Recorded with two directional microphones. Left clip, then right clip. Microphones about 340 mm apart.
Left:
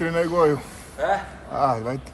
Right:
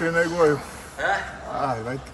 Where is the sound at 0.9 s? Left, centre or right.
Left.